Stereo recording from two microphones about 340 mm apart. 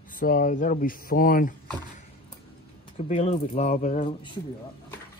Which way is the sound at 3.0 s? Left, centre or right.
Centre.